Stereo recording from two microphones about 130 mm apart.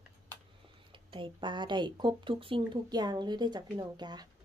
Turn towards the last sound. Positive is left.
turn(degrees=-30)  # may be behind; listen again after turning